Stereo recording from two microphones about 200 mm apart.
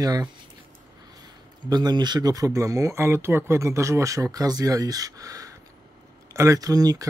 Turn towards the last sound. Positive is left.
turn(degrees=-20)  # may be behind; listen again after turning